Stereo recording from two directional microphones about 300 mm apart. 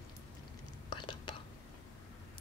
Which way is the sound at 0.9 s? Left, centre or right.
Centre.